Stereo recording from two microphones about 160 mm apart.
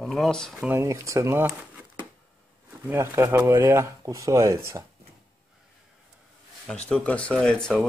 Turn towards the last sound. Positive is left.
turn(degrees=5)  # may be behind; listen again after turning